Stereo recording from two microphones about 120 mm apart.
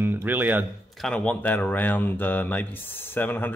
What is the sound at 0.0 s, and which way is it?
Speech, 15° right (ahead or behind).